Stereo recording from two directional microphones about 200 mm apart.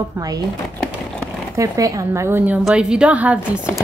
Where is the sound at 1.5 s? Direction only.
15° right (ahead or behind).